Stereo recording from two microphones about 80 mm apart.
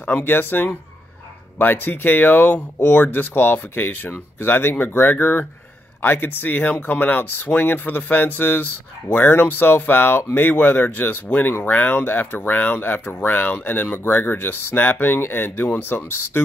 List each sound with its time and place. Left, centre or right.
0.0 s speech: left